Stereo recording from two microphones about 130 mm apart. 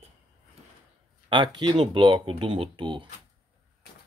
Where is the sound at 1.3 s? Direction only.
40° right (ahead or behind).